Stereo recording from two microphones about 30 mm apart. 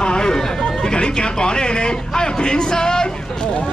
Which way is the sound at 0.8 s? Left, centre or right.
Left.